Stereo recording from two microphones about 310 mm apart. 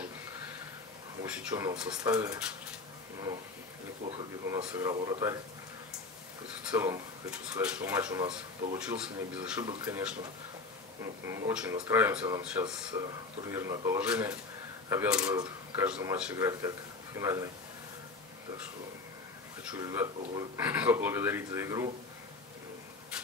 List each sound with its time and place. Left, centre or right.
1.2 s speech: centre
4.0 s speech: centre
6.7 s speech: centre
11.2 s speech: centre
19.7 s speech: centre